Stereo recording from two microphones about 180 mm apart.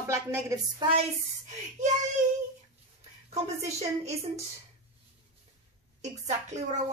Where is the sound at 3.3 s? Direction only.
35° right (ahead or behind).